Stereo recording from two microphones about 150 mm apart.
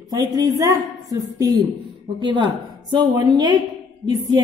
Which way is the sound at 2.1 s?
30° right (ahead or behind).